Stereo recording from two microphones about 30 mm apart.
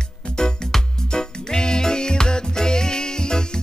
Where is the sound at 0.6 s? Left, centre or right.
Centre.